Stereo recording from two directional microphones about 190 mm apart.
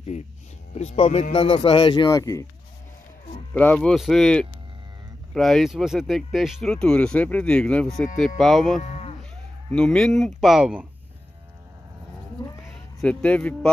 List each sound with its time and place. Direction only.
0.7 s a man's voice: 35° left (ahead or behind); by 2.4 s 15° left (ahead or behind)
3.5 s speech: 5° left (ahead or behind)
8.8 s cattle: 35° left (ahead or behind)
9.7 s speech: 5° left (ahead or behind)
12.4 s speech: 20° left (ahead or behind)
13.0 s speech: 5° left (ahead or behind)